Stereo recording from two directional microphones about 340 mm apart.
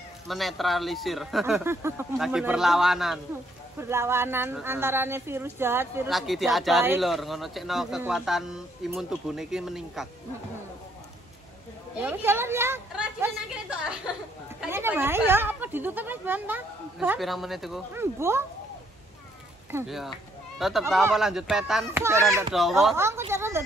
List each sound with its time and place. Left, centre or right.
0.3 s speech: centre
12.0 s a sound: centre
14.6 s speech: centre
19.7 s speech: centre